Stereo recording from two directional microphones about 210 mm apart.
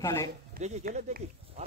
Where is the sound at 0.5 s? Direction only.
40° right (ahead or behind).